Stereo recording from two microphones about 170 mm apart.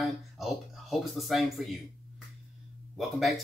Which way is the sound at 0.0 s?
Centre (ahead or behind).